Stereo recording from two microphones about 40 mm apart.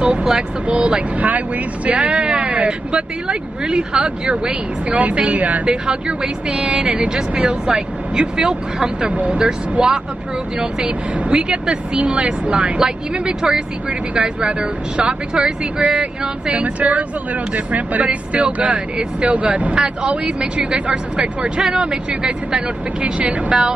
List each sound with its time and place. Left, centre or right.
0.0 s speech: right
5.7 s speech: right
9.1 s speech: right
9.4 s speech: centre
11.1 s speech: right